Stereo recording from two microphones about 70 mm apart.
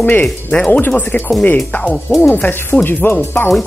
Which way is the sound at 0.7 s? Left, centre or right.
Left.